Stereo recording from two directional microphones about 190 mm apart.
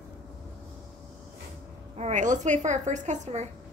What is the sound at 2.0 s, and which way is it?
A woman's voice, 40° right (ahead or behind).